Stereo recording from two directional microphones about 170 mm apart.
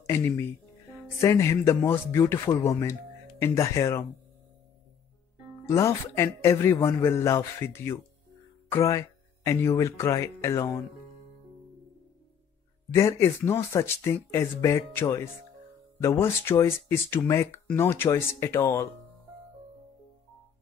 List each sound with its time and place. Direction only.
0.0 s speech: 15° left (ahead or behind)
5.7 s speech: 15° left (ahead or behind)
12.9 s speech: 15° left (ahead or behind)